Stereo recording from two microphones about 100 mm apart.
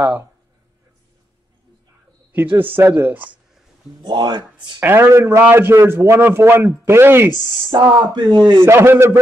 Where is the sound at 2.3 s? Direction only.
20° right (ahead or behind).